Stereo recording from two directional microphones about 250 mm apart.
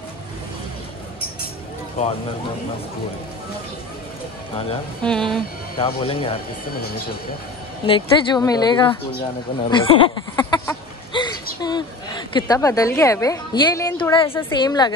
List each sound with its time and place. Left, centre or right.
5.0 s speech: centre
5.8 s speech: left
7.8 s speech: centre